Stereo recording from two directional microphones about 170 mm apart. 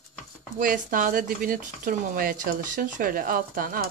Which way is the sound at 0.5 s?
50° right (ahead or behind).